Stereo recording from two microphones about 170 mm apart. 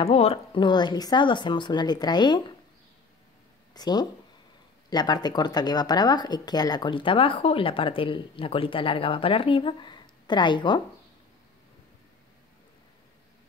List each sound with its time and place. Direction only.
0.0 s speech: 35° left (ahead or behind)
3.7 s speech: 25° left (ahead or behind)